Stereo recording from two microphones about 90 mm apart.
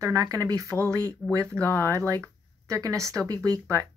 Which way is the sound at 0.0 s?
40° right (ahead or behind).